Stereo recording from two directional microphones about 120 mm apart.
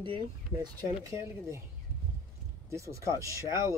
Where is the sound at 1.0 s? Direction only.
25° right (ahead or behind).